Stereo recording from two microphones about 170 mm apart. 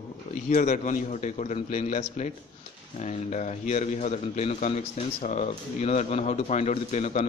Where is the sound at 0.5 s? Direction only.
45° left (ahead or behind).